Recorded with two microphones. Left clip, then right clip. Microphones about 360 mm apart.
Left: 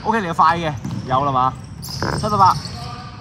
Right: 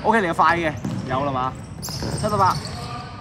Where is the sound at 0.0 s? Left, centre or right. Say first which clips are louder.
Left 1 dB; centre.